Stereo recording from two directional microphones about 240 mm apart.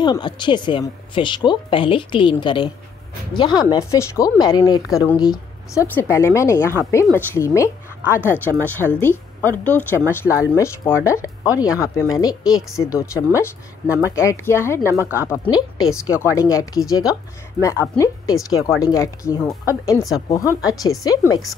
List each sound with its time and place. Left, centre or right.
0.0 s speech: centre
11.4 s speech: centre
11.8 s speech: centre